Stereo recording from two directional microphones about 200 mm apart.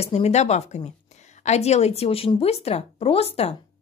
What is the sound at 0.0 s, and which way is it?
A woman's voice, 35° left (ahead or behind).